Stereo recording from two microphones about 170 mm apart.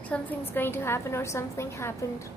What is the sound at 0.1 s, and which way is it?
A woman's voice, 10° left (ahead or behind).